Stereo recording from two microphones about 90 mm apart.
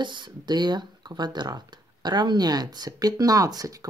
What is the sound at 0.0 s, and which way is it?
Speech, 60° right (ahead or behind).